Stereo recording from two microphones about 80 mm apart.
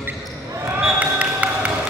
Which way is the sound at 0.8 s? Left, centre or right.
Centre.